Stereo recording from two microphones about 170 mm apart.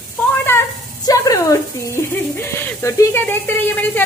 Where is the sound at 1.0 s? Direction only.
20° left (ahead or behind).